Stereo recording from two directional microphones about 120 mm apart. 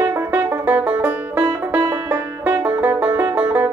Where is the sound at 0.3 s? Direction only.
15° right (ahead or behind).